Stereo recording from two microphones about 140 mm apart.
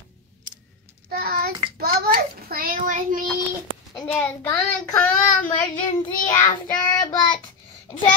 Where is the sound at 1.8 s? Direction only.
90° right.